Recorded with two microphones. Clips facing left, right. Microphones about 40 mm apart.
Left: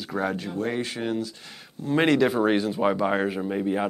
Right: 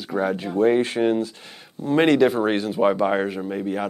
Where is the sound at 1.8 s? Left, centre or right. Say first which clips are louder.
Right 4 dB; centre.